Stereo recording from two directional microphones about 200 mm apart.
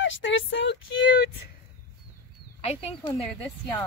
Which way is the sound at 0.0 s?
70° left (ahead or behind).